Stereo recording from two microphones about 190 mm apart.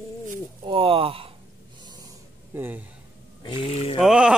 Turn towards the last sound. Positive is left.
turn(degrees=-5)  # may be behind; listen again after turning